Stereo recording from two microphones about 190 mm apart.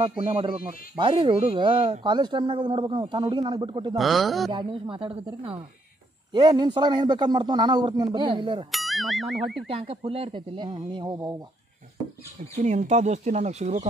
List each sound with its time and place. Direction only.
0.2 s speech: 25° right (ahead or behind)
3.9 s speech: centre (ahead or behind)
4.5 s speech: 25° right (ahead or behind)
8.7 s speech: centre (ahead or behind)
9.7 s speech: 30° right (ahead or behind)
12.6 s speech: 35° right (ahead or behind)